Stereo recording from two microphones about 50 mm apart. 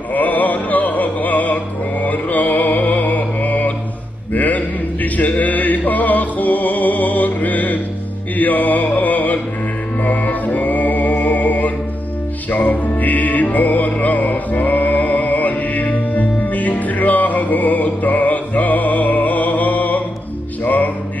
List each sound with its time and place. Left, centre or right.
0.1 s music: left